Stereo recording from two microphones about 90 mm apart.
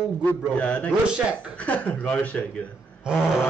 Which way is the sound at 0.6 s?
10° left (ahead or behind).